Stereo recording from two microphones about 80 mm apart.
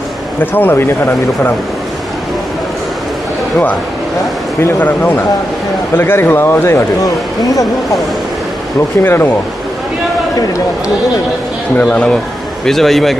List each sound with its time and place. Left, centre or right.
0.4 s speech: left
4.7 s a man's voice: left
9.0 s speech: left
11.8 s a man's voice: centre